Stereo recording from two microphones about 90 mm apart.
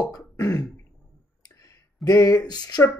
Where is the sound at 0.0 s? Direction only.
40° left (ahead or behind).